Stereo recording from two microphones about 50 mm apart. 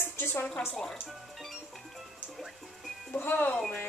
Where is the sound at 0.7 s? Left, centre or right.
Centre.